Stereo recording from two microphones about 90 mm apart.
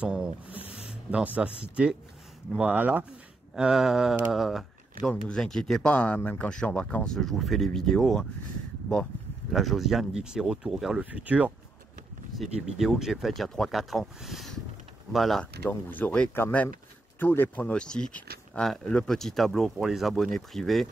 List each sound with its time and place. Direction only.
0.0 s speech: 10° right (ahead or behind)
0.6 s a sound: 10° right (ahead or behind)
1.1 s speech: 15° right (ahead or behind)
3.5 s speech: 5° right (ahead or behind); by 7.2 s 15° left (ahead or behind)
7.2 s speech: centre (ahead or behind)
9.5 s speech: centre (ahead or behind); by 11.5 s 15° right (ahead or behind)
12.5 s speech: 5° right (ahead or behind)
15.7 s speech: 20° left (ahead or behind); by 20.8 s centre (ahead or behind)